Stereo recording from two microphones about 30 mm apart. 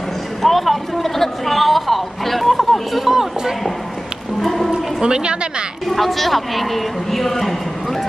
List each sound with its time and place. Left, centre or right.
0.4 s a sound: centre
4.4 s music: centre
5.0 s a woman's voice: right
5.9 s a woman's voice: centre